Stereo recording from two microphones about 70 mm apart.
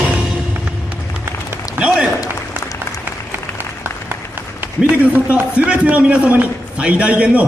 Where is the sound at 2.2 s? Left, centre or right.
Left.